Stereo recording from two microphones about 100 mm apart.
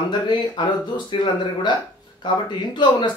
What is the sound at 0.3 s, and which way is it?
Speech, 50° left (ahead or behind).